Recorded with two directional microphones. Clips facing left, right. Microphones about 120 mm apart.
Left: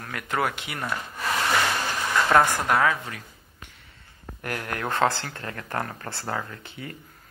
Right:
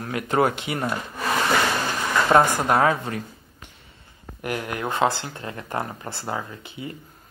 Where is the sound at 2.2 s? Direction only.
20° right (ahead or behind).